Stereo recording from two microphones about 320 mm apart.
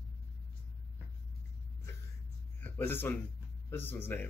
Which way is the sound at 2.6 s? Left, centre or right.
Centre.